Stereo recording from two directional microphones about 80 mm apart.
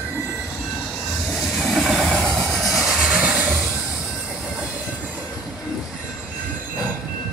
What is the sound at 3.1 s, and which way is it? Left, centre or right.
Vehicle, centre.